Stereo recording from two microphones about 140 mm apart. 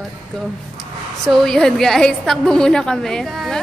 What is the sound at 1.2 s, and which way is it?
A woman's voice, 5° left (ahead or behind).